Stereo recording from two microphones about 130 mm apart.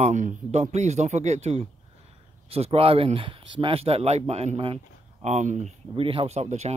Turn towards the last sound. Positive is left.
turn(degrees=-60)  # may be behind; listen again after turning